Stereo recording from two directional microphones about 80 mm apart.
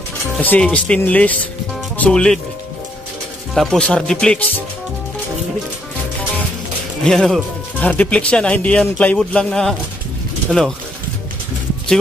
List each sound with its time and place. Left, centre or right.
0.4 s speech: centre
3.5 s speech: centre
7.0 s speech: centre
7.8 s speech: centre